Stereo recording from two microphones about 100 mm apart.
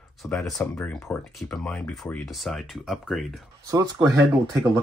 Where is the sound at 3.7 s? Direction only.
35° right (ahead or behind).